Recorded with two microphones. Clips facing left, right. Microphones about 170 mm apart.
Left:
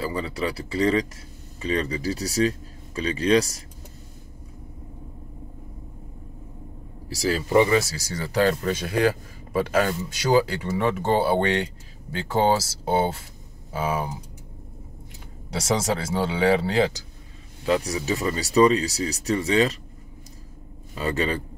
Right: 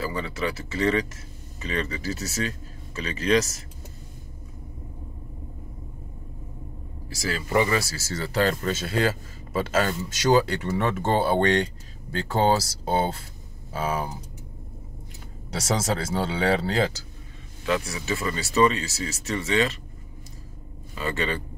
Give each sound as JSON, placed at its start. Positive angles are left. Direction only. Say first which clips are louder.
{"t": 0.0, "sound": "speech", "louder": "left 1 dB", "side_deg": 30}
{"t": 7.1, "sound": "speech", "louder": "left 5 dB", "side_deg": 35}
{"t": 7.5, "sound": "speech", "louder": "left 4 dB", "side_deg": 20}
{"t": 15.5, "sound": "speech", "louder": "left 2 dB", "side_deg": 10}
{"t": 17.6, "sound": "speech", "louder": "left 3 dB", "side_deg": 35}
{"t": 21.0, "sound": "speech", "louder": "left 3 dB", "side_deg": 35}